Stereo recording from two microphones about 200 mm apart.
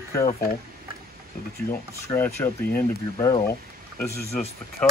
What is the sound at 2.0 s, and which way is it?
Speech, 10° left (ahead or behind).